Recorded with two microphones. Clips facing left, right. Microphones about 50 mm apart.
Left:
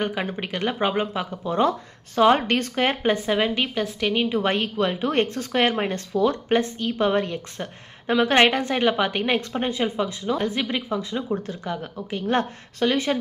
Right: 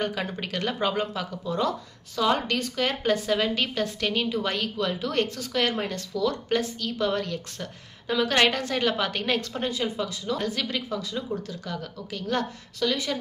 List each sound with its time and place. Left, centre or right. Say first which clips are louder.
0.0 s a woman's voice: left 3 dB; left
4.3 s speech: left 5 dB; left